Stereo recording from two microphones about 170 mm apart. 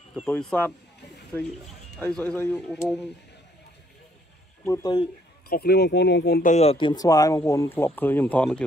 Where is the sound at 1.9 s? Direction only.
10° left (ahead or behind).